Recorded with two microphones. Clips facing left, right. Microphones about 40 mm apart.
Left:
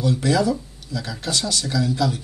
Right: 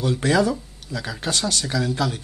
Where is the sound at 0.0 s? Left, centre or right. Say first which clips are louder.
Even; right.